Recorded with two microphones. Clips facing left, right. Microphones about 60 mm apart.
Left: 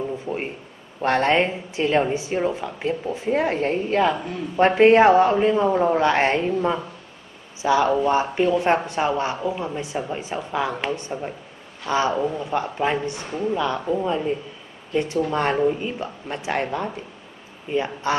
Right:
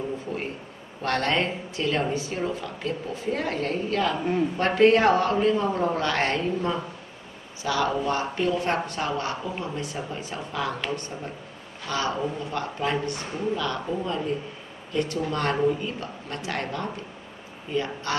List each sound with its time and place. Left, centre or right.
1.0 s speech: left